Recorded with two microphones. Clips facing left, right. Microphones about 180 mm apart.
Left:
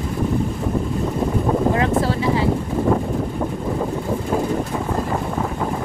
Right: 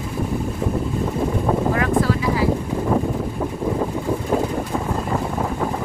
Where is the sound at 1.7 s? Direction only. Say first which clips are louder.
Even; 25° left (ahead or behind).